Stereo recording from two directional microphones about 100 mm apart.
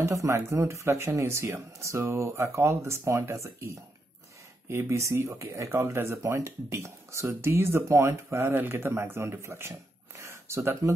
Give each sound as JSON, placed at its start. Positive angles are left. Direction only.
{"t": 0.0, "sound": "speech", "side_deg": -30}